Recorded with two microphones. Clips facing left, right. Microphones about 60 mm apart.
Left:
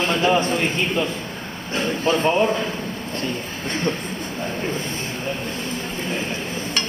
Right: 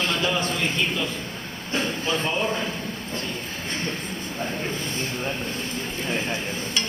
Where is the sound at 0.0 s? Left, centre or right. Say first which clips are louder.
Left 6 dB; left.